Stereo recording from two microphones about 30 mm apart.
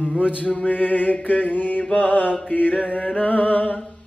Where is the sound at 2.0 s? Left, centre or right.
Left.